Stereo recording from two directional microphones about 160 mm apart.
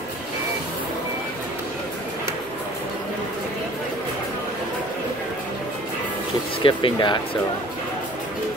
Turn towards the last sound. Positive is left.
turn(degrees=30)  # may be behind; listen again after turning